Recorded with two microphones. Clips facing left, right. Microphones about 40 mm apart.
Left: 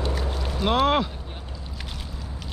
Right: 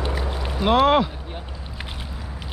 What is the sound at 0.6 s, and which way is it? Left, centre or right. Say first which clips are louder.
Speech: right 4 dB; centre.